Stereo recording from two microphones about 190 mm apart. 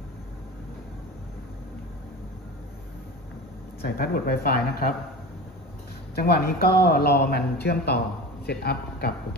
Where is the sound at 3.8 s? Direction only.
55° left (ahead or behind).